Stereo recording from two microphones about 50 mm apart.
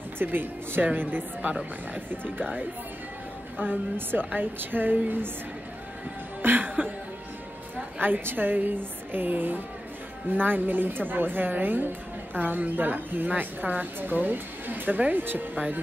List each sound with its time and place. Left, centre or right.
0.2 s speech: right
2.0 s a woman's voice: right
3.5 s a woman's voice: right
6.4 s music: right
8.0 s a woman's voice: right